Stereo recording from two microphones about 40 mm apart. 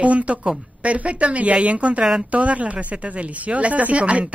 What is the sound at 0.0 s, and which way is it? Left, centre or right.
Speech, right.